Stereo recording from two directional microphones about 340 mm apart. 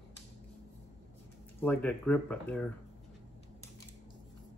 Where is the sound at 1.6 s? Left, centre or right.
Centre.